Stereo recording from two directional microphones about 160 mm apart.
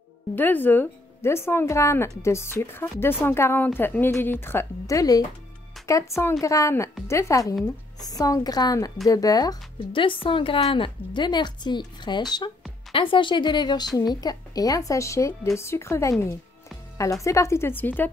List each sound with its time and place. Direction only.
0.4 s a woman's voice: 10° left (ahead or behind)